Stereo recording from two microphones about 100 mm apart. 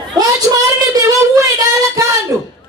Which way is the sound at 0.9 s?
35° right (ahead or behind).